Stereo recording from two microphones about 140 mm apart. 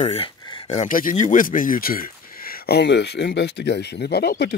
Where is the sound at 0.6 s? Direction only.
65° left (ahead or behind); by 2.7 s 90° left.